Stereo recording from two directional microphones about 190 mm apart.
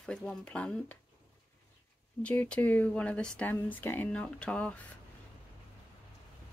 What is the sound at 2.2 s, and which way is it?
Speech, 5° left (ahead or behind).